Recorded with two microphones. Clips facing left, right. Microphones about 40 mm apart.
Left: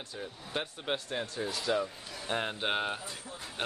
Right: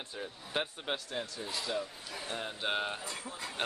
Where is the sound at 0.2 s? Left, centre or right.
Centre.